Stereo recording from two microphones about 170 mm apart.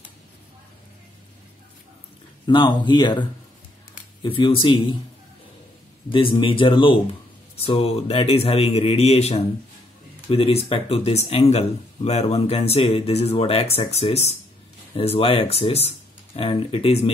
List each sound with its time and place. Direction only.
2.4 s speech: 30° left (ahead or behind)
6.4 s speech: 30° left (ahead or behind)